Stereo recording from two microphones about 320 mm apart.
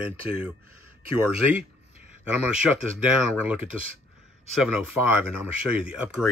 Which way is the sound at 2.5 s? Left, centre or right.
Centre.